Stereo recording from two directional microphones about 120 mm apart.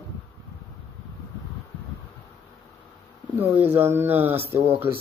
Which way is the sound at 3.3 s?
15° right (ahead or behind).